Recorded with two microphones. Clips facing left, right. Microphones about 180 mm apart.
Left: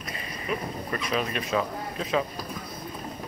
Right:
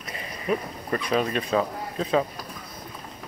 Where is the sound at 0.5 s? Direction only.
35° right (ahead or behind).